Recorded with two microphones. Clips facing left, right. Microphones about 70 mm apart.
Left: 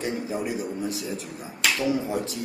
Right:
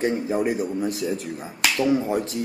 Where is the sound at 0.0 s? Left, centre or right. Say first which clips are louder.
Right 6 dB; right.